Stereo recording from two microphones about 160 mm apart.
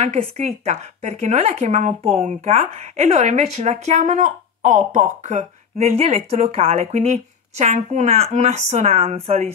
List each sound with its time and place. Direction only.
0.0 s speech: 45° right (ahead or behind)